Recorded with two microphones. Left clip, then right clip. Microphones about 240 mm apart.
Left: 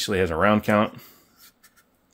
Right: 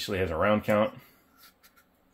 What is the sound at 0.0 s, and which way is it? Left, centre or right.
Speech, left.